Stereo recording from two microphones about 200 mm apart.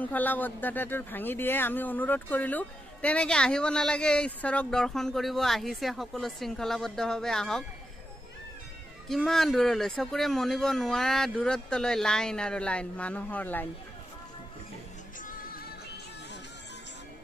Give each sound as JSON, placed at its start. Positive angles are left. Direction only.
{"t": 0.0, "sound": "speech", "side_deg": 10}
{"t": 9.1, "sound": "speech", "side_deg": 0}
{"t": 15.2, "sound": "music", "side_deg": 45}